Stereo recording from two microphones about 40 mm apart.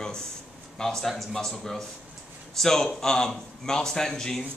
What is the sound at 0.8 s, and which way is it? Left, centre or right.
Speech, centre.